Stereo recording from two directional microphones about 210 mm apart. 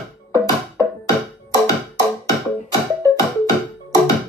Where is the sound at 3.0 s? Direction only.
15° left (ahead or behind).